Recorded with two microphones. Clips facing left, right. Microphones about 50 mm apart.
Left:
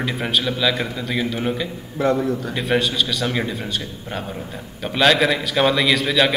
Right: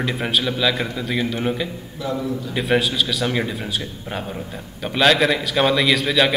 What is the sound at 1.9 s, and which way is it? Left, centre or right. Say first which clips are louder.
Speech: left 7 dB; left.